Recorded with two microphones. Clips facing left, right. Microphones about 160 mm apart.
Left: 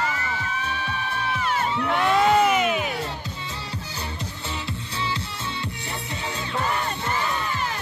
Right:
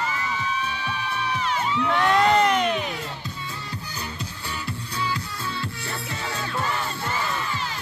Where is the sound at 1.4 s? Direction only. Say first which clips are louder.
Left 2 dB; 50° left (ahead or behind).